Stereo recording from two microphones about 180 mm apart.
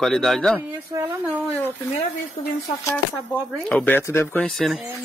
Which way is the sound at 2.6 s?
15° left (ahead or behind).